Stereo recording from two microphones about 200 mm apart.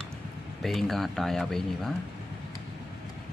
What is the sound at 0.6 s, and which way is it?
Speech, centre (ahead or behind).